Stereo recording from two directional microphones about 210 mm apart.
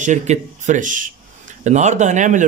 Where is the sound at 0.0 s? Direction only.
35° right (ahead or behind).